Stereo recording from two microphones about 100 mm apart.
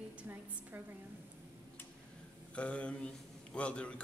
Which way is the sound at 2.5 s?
10° left (ahead or behind).